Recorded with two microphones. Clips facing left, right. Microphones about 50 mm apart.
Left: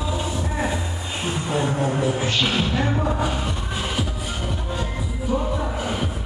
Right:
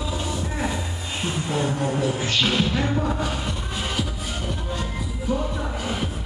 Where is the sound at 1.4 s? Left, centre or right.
Centre.